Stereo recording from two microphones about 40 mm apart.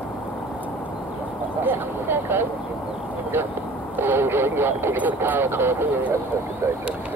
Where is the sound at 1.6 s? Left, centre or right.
Right.